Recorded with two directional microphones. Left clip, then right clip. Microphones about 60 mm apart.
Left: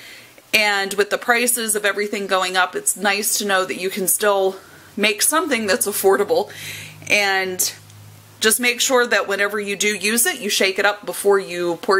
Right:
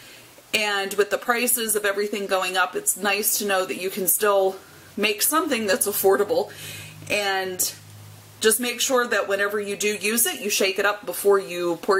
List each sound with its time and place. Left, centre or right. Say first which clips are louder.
0.5 s a woman's voice: left 6 dB; left